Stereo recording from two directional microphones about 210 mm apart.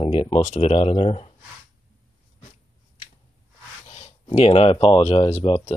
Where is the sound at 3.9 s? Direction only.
30° left (ahead or behind).